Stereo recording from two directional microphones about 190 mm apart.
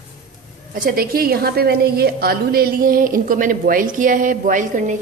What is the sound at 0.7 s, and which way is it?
A woman's voice, 50° right (ahead or behind).